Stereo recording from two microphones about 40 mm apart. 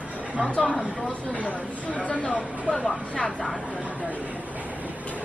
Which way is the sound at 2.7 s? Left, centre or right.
Right.